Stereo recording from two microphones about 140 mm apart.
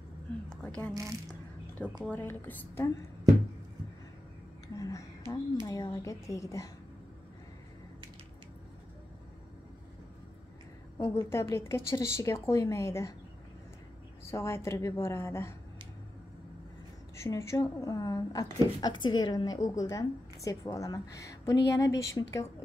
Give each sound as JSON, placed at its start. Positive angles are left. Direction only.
{"t": 2.0, "sound": "a woman's voice", "side_deg": 15}
{"t": 4.7, "sound": "a woman's voice", "side_deg": 25}
{"t": 11.0, "sound": "a woman's voice", "side_deg": 20}
{"t": 14.3, "sound": "a woman's voice", "side_deg": 20}
{"t": 17.2, "sound": "a woman's voice", "side_deg": 20}